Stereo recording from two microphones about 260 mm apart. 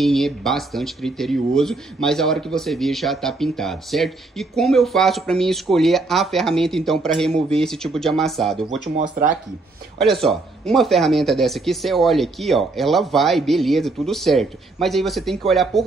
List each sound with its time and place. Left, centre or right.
0.0 s speech: centre
8.9 s speech: right
9.9 s speech: centre